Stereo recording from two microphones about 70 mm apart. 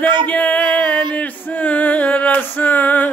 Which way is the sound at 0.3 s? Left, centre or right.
Left.